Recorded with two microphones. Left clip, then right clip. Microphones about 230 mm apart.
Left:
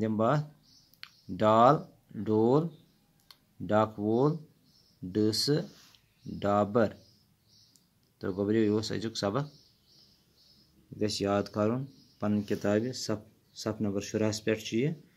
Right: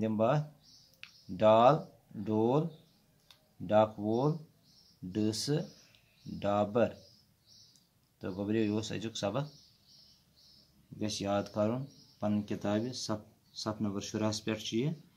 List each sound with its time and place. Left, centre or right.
0.0 s speech: centre
8.2 s speech: centre
11.0 s speech: centre